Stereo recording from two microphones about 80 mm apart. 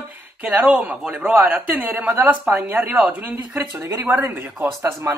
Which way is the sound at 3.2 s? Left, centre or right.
Right.